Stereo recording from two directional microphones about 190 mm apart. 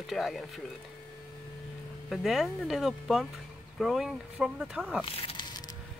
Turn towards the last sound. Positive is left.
turn(degrees=20)  # may be behind; listen again after turning